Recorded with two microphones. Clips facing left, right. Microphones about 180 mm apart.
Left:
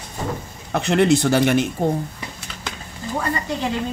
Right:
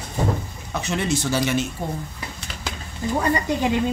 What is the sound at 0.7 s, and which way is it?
Speech, 60° left (ahead or behind).